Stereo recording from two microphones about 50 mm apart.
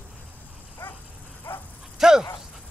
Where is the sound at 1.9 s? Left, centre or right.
Centre.